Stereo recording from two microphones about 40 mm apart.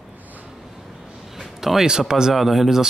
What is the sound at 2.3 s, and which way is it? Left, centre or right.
Speech, centre.